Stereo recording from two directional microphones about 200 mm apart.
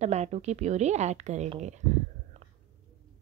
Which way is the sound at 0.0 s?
35° right (ahead or behind).